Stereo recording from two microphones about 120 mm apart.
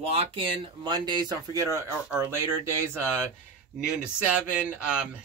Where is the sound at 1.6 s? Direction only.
20° right (ahead or behind).